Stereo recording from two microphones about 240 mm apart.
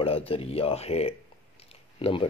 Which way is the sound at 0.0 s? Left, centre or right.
Left.